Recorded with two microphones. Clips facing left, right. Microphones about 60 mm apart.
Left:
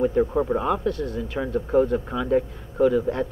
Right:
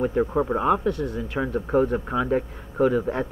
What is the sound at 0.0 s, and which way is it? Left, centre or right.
Speech, centre.